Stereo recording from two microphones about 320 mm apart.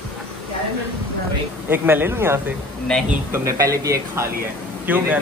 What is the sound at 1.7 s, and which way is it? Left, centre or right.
A man's voice, centre.